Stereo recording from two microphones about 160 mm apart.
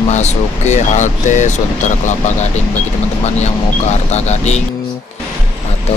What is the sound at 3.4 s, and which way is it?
Speech, 45° left (ahead or behind).